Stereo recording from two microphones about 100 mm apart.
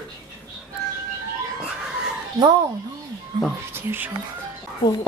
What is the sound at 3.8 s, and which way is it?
Speech, 25° right (ahead or behind).